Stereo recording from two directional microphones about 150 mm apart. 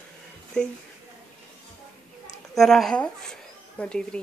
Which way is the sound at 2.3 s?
Centre (ahead or behind).